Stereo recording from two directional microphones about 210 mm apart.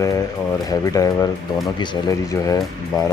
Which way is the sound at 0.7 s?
15° left (ahead or behind).